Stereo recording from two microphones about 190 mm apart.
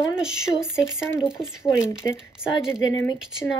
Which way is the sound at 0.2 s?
5° right (ahead or behind).